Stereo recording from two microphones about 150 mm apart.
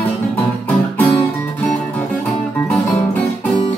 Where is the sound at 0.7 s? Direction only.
10° left (ahead or behind).